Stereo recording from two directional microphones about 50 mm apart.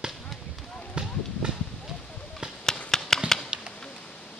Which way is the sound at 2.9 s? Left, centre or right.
Centre.